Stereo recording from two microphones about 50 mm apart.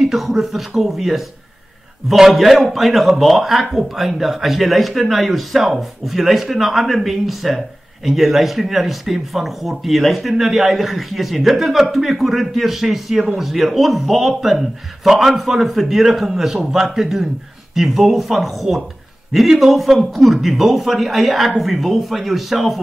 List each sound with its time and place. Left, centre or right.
0.1 s a man's voice: centre